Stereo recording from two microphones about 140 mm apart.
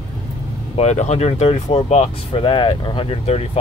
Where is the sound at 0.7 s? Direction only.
55° left (ahead or behind).